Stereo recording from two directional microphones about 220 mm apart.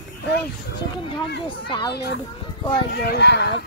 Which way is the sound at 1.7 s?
20° left (ahead or behind).